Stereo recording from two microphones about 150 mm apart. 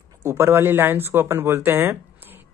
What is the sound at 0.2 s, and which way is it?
Speech, 15° right (ahead or behind).